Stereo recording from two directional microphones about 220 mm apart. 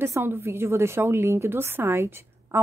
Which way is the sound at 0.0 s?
10° right (ahead or behind).